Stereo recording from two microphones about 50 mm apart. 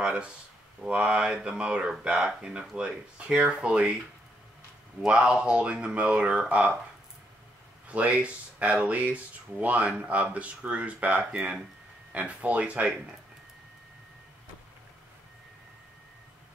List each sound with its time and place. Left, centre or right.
0.0 s a sound: right
0.8 s speech: right
5.0 s speech: right
7.9 s speech: right